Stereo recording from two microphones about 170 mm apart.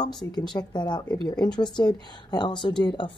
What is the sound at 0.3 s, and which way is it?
Speech, 25° left (ahead or behind).